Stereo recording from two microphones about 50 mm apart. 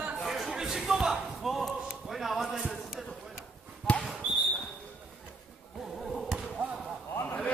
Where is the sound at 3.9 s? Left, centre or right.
Centre.